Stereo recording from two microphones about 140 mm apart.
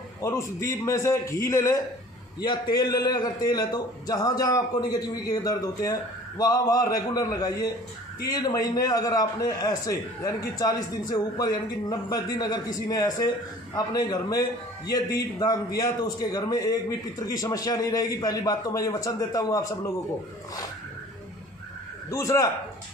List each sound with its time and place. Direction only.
0.2 s a man's voice: 20° left (ahead or behind)
22.1 s a man's voice: 20° left (ahead or behind)